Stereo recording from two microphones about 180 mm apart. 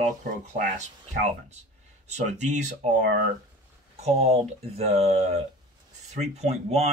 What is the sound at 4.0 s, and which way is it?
Speech, 35° right (ahead or behind).